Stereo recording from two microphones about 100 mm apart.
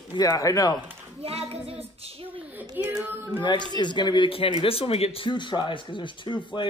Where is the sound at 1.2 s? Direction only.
90° right.